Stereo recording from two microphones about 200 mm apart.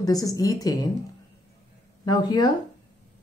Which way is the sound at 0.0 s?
20° left (ahead or behind).